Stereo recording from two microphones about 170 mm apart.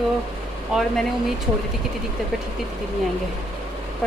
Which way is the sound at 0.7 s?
5° right (ahead or behind).